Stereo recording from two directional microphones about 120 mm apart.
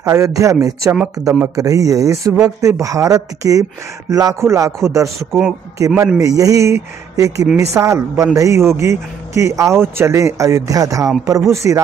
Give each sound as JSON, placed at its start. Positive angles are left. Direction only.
{"t": 0.0, "sound": "speech", "side_deg": -25}